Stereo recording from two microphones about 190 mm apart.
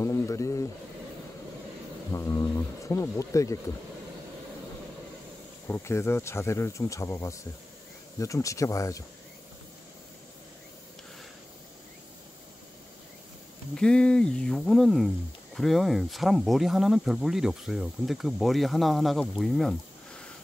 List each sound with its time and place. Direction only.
0.0 s speech: 15° left (ahead or behind)
2.1 s speech: 15° left (ahead or behind)
5.7 s speech: 15° left (ahead or behind)
13.7 s speech: 5° left (ahead or behind)